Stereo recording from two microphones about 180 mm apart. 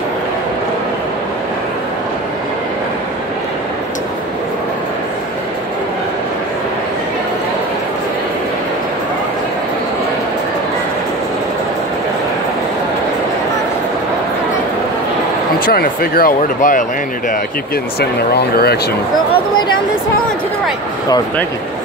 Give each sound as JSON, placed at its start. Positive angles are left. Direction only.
{"t": 15.6, "sound": "speech", "side_deg": 55}
{"t": 18.4, "sound": "speech", "side_deg": 65}